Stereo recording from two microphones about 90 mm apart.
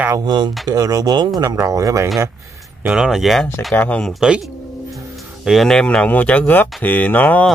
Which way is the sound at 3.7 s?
20° left (ahead or behind).